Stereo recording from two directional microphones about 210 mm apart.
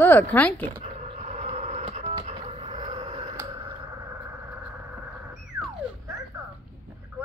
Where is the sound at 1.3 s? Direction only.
30° right (ahead or behind).